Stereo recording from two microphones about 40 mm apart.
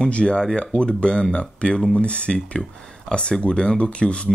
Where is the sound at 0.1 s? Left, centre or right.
Left.